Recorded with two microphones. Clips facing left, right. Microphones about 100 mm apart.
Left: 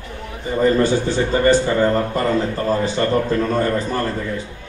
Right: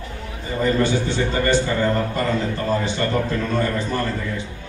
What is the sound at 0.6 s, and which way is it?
A man's voice, 35° left (ahead or behind).